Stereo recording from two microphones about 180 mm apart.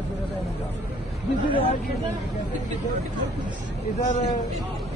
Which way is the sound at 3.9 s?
40° left (ahead or behind).